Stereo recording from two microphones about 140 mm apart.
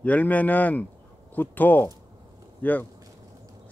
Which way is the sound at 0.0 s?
10° left (ahead or behind).